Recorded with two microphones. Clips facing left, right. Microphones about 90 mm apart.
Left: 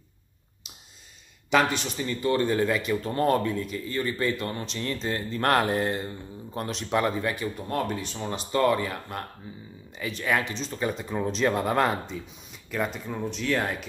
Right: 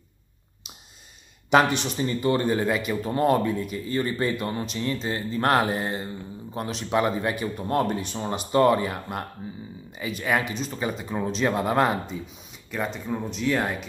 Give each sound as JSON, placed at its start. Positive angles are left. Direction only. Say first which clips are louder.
{"t": 1.5, "sound": "a man's voice", "louder": "right 3 dB", "side_deg": -20}